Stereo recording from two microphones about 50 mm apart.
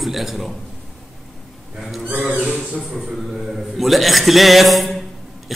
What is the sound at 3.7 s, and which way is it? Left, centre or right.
A man's voice, centre.